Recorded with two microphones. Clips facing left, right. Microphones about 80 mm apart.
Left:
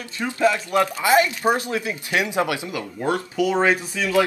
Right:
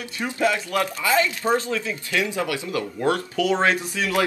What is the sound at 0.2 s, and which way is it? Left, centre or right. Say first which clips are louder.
Speech: left 3 dB; centre.